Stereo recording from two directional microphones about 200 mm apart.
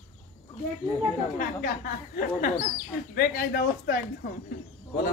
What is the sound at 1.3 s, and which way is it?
Speech, 45° left (ahead or behind).